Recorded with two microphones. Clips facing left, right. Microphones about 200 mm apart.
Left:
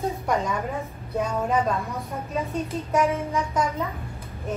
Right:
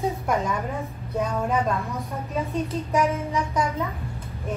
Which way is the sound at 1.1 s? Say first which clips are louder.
Left 1 dB; centre (ahead or behind).